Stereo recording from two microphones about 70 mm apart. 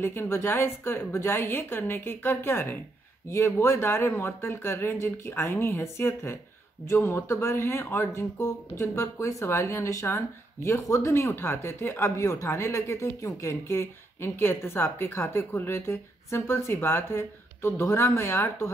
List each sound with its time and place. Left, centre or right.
0.0 s speech: left
12.2 s speech: left